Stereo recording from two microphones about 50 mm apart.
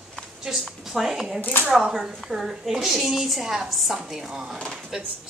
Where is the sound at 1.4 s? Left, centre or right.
Left.